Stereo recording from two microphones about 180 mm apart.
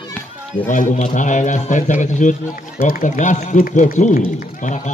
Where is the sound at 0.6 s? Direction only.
45° left (ahead or behind).